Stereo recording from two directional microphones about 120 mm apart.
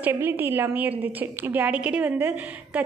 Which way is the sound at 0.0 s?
15° right (ahead or behind).